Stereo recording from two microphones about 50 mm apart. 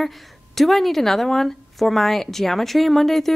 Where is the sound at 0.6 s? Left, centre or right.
Centre.